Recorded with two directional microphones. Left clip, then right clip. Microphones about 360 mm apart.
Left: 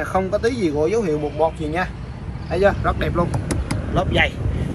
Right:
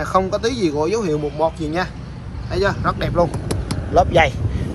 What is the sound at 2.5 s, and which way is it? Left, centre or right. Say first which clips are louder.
Speech: left 2 dB; centre.